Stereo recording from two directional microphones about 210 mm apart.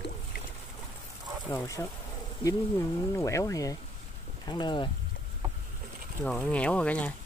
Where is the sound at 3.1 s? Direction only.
15° left (ahead or behind).